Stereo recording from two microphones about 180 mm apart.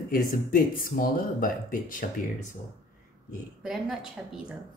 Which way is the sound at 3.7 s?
5° right (ahead or behind).